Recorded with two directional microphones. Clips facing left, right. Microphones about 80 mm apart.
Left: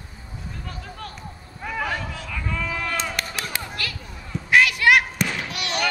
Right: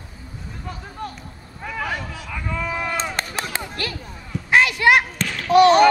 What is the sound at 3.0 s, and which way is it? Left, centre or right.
Chop, right.